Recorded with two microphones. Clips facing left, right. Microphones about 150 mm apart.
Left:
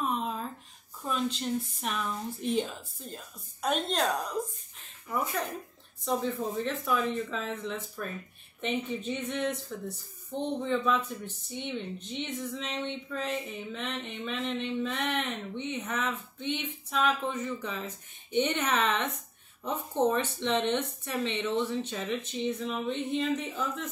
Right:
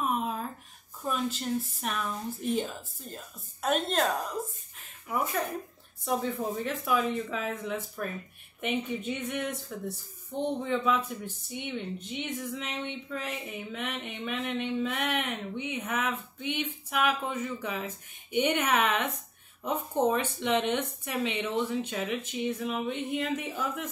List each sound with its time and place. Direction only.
0.1 s a sound: 5° right (ahead or behind)
1.0 s speech: 5° right (ahead or behind)
6.0 s speech: 10° right (ahead or behind)